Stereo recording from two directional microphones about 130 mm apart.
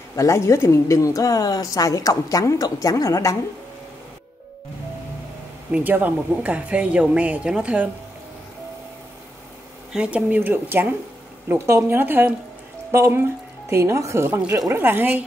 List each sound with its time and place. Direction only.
0.1 s speech: 25° left (ahead or behind)
5.7 s speech: 10° right (ahead or behind)
9.9 s speech: 10° right (ahead or behind)